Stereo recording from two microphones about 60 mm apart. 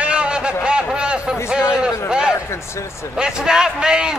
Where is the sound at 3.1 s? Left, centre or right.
Centre.